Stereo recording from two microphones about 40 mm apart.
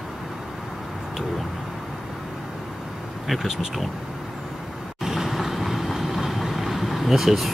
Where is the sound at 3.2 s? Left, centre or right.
Centre.